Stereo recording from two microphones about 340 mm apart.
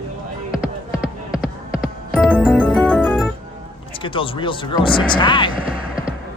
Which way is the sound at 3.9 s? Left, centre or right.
Centre.